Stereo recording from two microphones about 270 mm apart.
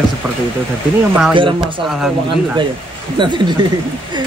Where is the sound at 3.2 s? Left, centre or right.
Centre.